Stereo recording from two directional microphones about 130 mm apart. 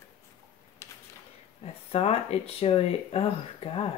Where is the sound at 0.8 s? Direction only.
20° left (ahead or behind).